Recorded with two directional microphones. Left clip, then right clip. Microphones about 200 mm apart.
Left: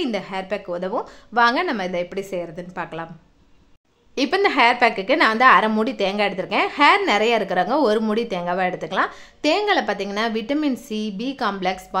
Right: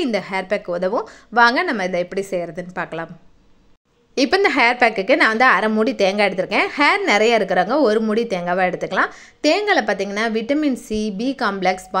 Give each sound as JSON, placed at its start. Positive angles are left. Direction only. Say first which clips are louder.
{"t": 0.0, "sound": "a woman's voice", "louder": "right 4 dB", "side_deg": -20}
{"t": 4.1, "sound": "a woman's voice", "louder": "right 3 dB", "side_deg": -15}
{"t": 5.9, "sound": "a woman's voice", "louder": "right 4 dB", "side_deg": -15}